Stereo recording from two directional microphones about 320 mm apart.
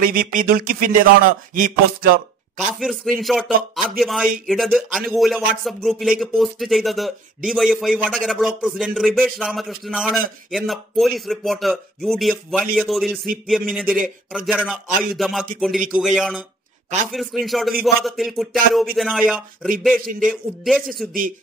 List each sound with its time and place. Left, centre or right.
0.0 s speech: right
2.5 s speech: centre